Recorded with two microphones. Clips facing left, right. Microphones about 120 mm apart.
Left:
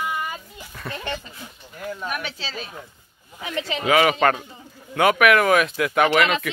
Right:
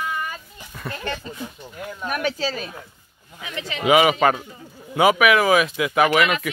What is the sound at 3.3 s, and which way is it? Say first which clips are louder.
Speech: left 4 dB; 35° left (ahead or behind).